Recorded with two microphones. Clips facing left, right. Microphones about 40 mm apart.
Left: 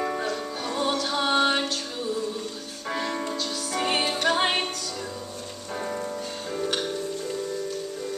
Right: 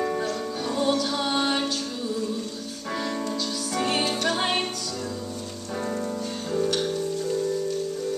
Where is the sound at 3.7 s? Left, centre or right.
Centre.